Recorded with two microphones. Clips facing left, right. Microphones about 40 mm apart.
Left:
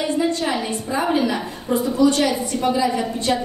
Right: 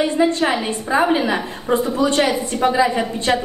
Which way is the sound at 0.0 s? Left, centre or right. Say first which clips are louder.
Right 4 dB; right.